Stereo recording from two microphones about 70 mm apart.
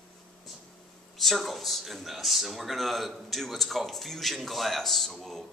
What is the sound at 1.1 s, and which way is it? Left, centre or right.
Speech, centre.